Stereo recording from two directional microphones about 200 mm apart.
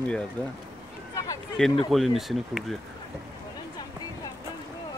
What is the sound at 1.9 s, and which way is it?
Speech, centre (ahead or behind).